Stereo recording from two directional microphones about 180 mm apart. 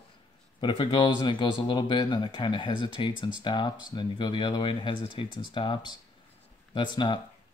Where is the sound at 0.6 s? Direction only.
25° left (ahead or behind).